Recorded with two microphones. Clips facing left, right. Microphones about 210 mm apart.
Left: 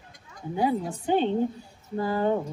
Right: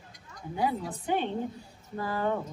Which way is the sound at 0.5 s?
30° left (ahead or behind).